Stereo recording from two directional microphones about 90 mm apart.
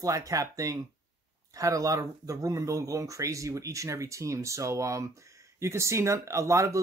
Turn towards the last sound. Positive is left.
turn(degrees=-35)  # may be behind; listen again after turning